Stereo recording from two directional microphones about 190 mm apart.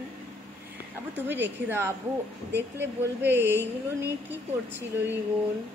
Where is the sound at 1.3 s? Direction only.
10° right (ahead or behind).